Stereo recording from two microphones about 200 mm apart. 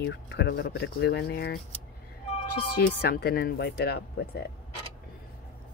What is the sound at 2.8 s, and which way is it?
Speech, 50° left (ahead or behind).